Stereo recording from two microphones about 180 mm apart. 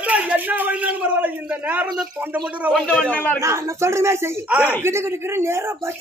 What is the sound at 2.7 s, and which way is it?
Speech, 5° left (ahead or behind).